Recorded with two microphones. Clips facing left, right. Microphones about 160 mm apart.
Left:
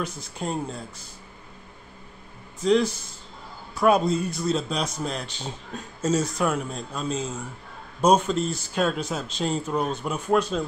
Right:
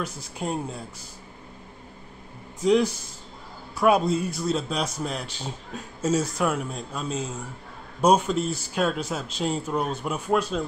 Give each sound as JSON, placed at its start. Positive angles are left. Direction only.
{"t": 0.0, "sound": "a man's voice", "side_deg": -10}
{"t": 2.6, "sound": "a man's voice", "side_deg": -10}